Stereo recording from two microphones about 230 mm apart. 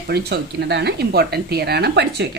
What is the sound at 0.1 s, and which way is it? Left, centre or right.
Speech, right.